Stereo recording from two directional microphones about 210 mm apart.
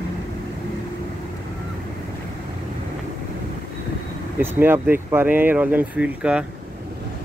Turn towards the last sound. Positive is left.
turn(degrees=-5)  # may be behind; listen again after turning